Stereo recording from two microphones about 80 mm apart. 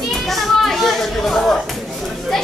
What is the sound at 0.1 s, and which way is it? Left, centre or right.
Children playing, centre.